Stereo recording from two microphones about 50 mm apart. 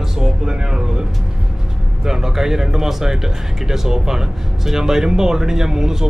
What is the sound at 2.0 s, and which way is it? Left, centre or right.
Speech, centre.